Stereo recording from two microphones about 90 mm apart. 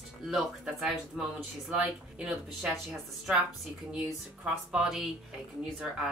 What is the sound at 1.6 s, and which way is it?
Speech, 20° right (ahead or behind).